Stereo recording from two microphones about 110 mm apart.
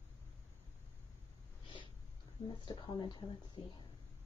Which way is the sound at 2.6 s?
45° left (ahead or behind).